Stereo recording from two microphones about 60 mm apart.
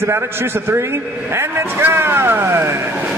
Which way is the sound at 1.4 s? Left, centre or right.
Right.